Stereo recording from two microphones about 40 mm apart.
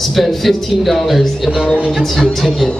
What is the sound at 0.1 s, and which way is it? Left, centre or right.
A man's voice, centre.